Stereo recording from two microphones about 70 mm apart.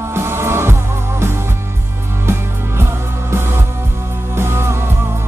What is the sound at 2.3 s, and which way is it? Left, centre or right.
Music, right.